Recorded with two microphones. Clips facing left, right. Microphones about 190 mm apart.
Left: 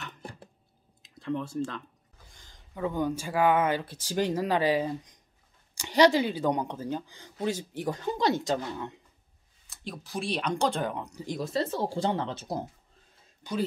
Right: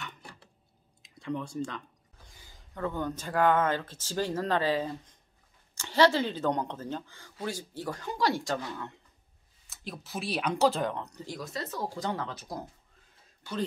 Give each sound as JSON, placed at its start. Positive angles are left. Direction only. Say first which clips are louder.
{"t": 1.0, "sound": "speech", "louder": "left 3 dB", "side_deg": 0}
{"t": 2.3, "sound": "a sound", "louder": "right 3 dB", "side_deg": -5}
{"t": 2.7, "sound": "speech", "louder": "left 4 dB", "side_deg": 10}
{"t": 9.7, "sound": "speech", "louder": "left 1 dB", "side_deg": 0}
{"t": 11.3, "sound": "speech", "louder": "left 8 dB", "side_deg": 30}
{"t": 13.4, "sound": "a man's voice", "louder": "left 3 dB", "side_deg": 15}